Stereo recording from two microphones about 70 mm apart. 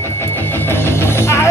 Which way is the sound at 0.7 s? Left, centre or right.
Left.